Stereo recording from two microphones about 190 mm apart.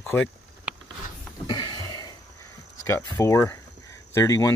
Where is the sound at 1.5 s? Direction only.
25° left (ahead or behind).